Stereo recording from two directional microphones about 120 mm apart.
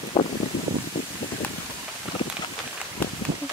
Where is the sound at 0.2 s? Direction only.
45° left (ahead or behind).